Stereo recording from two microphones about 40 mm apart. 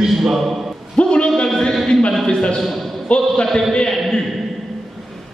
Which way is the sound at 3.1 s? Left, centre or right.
Left.